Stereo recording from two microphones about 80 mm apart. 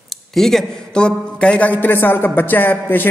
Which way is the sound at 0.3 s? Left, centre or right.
Centre.